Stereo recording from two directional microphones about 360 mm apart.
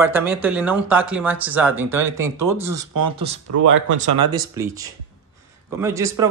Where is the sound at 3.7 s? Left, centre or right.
Right.